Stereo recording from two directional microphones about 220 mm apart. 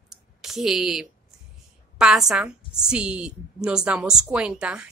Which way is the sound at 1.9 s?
5° right (ahead or behind).